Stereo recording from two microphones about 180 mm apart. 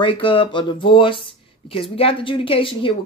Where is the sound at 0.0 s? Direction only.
30° left (ahead or behind).